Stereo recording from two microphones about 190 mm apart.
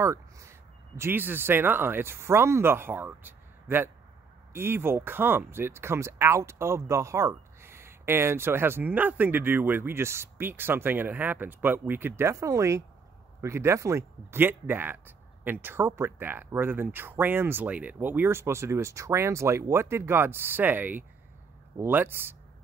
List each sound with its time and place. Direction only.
0.0 s speech: 15° right (ahead or behind)